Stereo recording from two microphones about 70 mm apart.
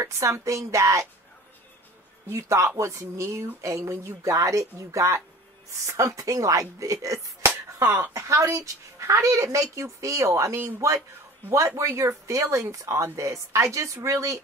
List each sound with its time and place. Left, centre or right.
0.0 s speech: right
2.2 s speech: right
7.8 s speech: right